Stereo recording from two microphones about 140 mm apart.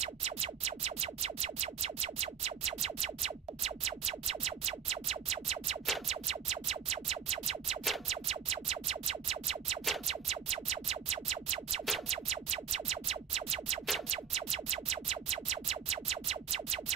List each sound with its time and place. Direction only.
0.0 s music: 50° right (ahead or behind)